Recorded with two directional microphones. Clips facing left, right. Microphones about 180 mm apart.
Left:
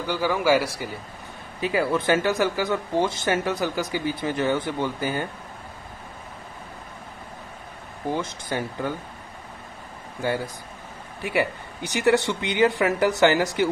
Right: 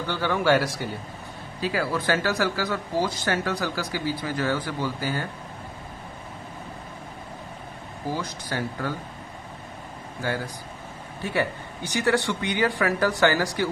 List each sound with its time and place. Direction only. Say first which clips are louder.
0.0 s speech: left 1 dB; 10° left (ahead or behind)
1.6 s speech: left 3 dB; 20° left (ahead or behind)
8.1 s speech: left 3 dB; 20° left (ahead or behind)
10.2 s speech: left 3 dB; 25° left (ahead or behind)